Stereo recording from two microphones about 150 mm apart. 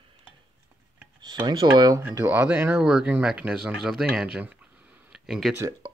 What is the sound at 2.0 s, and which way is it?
Speech, 15° right (ahead or behind).